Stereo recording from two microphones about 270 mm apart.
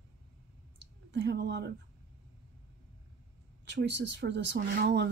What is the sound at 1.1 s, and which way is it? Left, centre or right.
Speech, right.